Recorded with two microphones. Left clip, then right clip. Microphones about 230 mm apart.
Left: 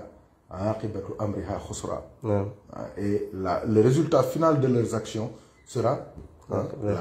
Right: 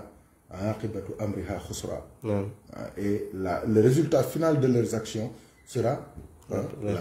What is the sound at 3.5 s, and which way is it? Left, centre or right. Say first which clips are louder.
Speech: left 1 dB; centre.